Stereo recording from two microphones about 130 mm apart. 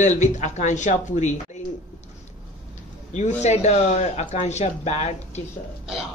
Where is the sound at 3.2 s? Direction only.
60° left (ahead or behind).